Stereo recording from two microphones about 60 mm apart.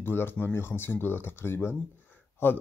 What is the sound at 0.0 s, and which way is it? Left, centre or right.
Speech, left.